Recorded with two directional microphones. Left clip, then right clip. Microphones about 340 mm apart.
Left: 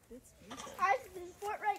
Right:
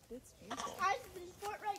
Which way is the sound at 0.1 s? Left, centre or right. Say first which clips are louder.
Right 4 dB; centre.